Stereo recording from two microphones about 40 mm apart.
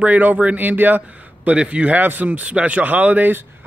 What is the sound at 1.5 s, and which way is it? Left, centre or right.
Speech, right.